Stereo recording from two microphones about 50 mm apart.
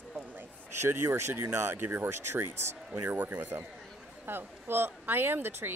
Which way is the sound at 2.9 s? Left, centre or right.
Right.